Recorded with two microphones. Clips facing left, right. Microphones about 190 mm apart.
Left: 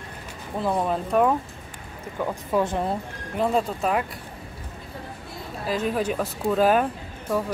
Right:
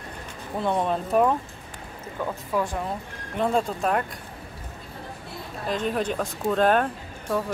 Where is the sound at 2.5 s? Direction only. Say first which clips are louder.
Left 3 dB; 20° left (ahead or behind).